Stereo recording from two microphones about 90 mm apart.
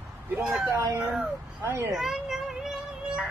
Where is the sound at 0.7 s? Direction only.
35° right (ahead or behind).